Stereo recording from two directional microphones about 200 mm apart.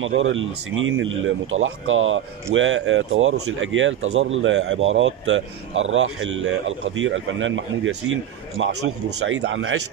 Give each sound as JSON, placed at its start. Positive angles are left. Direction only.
{"t": 0.0, "sound": "speech", "side_deg": -75}